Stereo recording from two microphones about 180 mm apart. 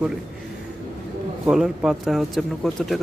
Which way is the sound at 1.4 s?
5° right (ahead or behind).